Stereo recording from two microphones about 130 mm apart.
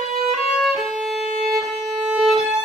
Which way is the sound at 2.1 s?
5° right (ahead or behind).